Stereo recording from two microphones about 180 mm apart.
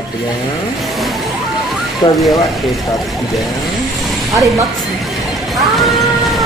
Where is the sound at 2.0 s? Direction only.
25° left (ahead or behind).